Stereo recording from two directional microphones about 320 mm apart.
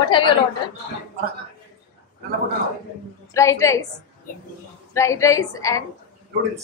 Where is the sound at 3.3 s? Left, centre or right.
Centre.